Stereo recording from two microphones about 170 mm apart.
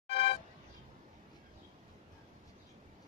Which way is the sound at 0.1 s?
35° left (ahead or behind).